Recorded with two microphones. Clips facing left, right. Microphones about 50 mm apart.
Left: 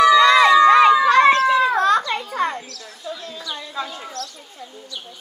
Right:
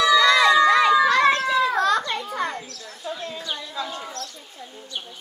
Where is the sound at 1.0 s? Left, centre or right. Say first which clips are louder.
Left 4 dB; left.